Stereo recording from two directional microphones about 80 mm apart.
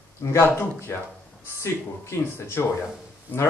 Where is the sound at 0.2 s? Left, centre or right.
Left.